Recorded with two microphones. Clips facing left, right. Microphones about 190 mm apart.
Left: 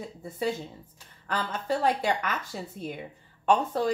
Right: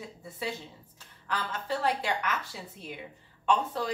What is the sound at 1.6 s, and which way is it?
A woman's voice, 45° left (ahead or behind).